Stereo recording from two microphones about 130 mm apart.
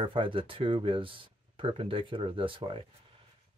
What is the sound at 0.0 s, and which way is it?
Speech, 40° right (ahead or behind).